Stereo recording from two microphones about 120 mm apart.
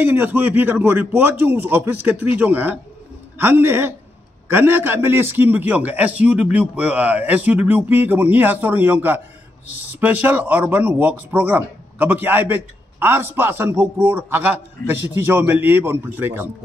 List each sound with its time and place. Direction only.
0.0 s speech: 15° right (ahead or behind)